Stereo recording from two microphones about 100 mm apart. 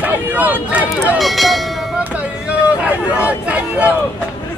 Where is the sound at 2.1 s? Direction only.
10° right (ahead or behind).